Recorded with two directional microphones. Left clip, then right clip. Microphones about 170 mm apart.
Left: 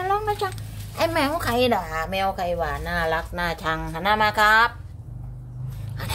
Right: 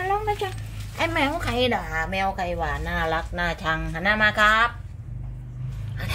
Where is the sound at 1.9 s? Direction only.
Centre (ahead or behind).